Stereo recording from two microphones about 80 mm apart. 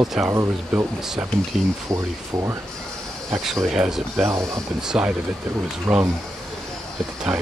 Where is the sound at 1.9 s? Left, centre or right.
Right.